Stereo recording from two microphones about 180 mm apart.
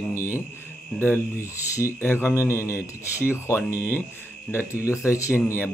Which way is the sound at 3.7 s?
10° right (ahead or behind).